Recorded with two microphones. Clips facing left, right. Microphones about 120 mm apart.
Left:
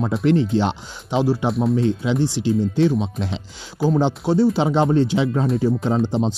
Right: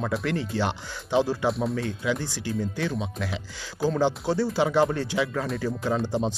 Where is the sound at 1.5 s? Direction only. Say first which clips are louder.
Left 5 dB; centre (ahead or behind).